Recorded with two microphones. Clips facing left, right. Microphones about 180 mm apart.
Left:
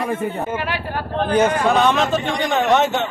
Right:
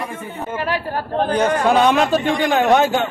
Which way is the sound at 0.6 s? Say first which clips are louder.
Right 2 dB; 40° right (ahead or behind).